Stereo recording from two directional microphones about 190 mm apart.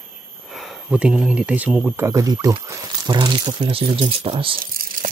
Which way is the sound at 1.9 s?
15° right (ahead or behind).